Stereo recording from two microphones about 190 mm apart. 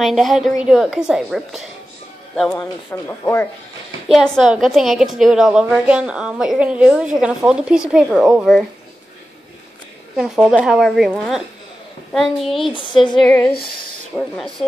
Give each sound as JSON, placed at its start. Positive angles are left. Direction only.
{"t": 0.0, "sound": "a woman's voice", "side_deg": 0}
{"t": 4.1, "sound": "a woman's voice", "side_deg": 0}
{"t": 10.1, "sound": "a woman's voice", "side_deg": -5}
{"t": 12.7, "sound": "a sound", "side_deg": 25}
{"t": 13.2, "sound": "a woman's voice", "side_deg": 5}